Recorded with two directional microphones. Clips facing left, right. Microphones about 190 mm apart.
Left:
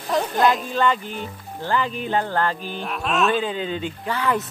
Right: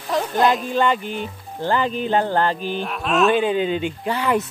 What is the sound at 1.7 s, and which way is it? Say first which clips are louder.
Music: right 3 dB; 30° right (ahead or behind).